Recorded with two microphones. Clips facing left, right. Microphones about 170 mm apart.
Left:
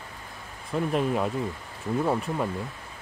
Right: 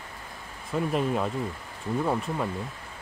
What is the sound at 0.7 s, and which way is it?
Speech, centre (ahead or behind).